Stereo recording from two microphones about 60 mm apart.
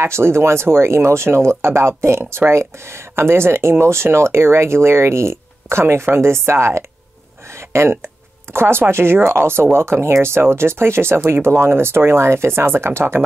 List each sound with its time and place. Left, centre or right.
0.0 s speech: right